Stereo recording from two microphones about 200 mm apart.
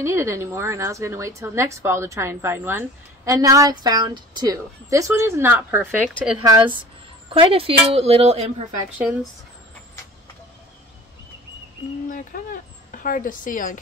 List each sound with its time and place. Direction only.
0.0 s a woman's voice: 15° right (ahead or behind)
5.8 s speech: centre (ahead or behind)
6.3 s speech: 25° right (ahead or behind)
8.8 s speech: 5° right (ahead or behind)
12.1 s a woman's voice: 40° left (ahead or behind)